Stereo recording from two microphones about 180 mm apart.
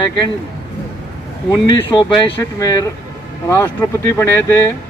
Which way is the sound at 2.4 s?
20° left (ahead or behind).